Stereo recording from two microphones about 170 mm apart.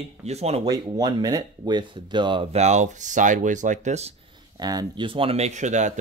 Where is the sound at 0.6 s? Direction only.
25° right (ahead or behind); by 4.1 s 40° right (ahead or behind).